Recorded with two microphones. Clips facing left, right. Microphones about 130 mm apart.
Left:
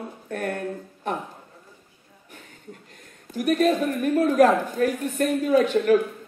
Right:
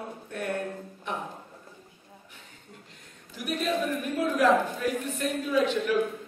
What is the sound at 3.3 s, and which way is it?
A woman's voice, 50° left (ahead or behind).